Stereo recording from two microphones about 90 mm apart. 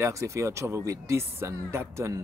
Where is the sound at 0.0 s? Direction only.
35° right (ahead or behind).